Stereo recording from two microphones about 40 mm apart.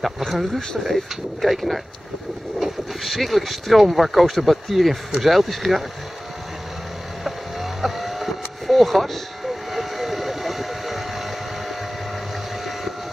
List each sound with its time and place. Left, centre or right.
0.2 s speech: centre
7.8 s vehicle: centre